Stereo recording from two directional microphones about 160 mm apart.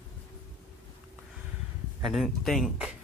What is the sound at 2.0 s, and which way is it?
Speech, centre (ahead or behind).